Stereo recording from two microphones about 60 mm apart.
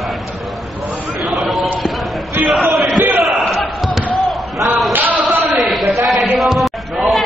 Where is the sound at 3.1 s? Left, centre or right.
Centre.